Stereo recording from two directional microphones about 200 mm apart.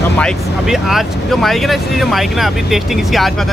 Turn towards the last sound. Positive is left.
turn(degrees=0)  # may be behind; listen again after turning